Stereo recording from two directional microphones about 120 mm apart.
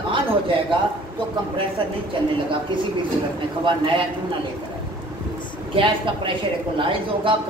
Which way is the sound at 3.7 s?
45° right (ahead or behind).